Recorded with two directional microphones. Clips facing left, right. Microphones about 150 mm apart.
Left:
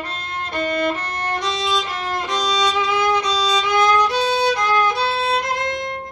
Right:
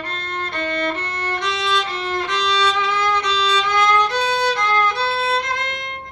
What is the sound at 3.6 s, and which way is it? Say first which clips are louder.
Violin: left 3 dB; 10° left (ahead or behind).